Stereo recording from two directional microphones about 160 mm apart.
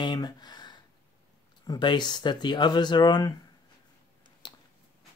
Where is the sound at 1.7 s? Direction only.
30° left (ahead or behind).